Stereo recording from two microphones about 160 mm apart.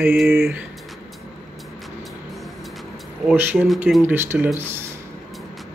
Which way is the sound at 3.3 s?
5° right (ahead or behind).